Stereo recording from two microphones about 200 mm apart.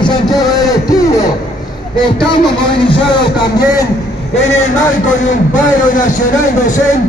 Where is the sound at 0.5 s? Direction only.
20° left (ahead or behind).